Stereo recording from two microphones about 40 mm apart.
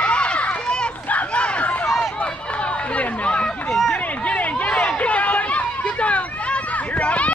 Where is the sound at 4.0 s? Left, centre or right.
Left.